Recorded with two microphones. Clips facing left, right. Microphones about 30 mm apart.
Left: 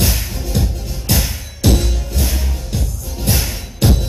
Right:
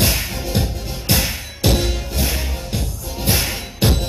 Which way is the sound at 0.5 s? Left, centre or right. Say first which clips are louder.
Left 3 dB; right.